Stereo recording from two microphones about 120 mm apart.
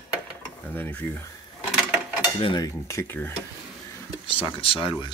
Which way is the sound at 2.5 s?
30° left (ahead or behind).